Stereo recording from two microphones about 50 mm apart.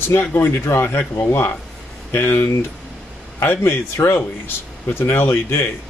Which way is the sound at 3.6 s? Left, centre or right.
Left.